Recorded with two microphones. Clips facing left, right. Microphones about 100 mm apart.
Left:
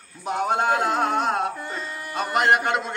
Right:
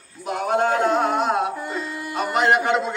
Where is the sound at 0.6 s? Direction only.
15° left (ahead or behind).